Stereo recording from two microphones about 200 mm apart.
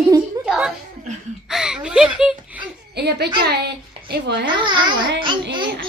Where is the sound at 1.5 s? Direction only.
5° right (ahead or behind).